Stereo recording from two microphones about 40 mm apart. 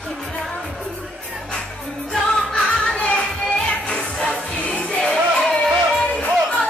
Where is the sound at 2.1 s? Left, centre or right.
Centre.